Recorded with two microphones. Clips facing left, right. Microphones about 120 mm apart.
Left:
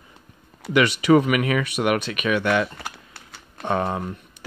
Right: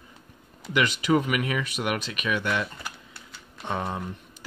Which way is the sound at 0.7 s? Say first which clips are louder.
Left 6 dB; 70° left (ahead or behind).